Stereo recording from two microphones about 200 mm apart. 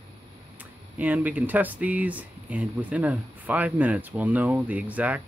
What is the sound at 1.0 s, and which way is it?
Speech, 10° right (ahead or behind).